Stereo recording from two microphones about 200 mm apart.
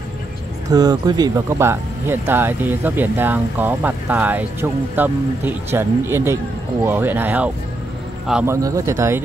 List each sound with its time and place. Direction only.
0.7 s a man's voice: 20° right (ahead or behind); by 8.5 s 5° right (ahead or behind)
8.5 s speech: 15° right (ahead or behind)